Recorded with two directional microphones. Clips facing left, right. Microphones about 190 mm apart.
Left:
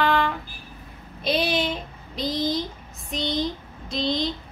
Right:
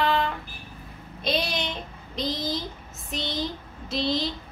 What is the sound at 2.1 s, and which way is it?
A woman's voice, centre (ahead or behind).